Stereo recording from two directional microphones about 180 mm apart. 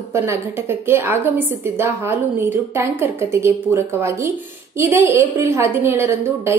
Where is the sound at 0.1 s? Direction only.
15° right (ahead or behind).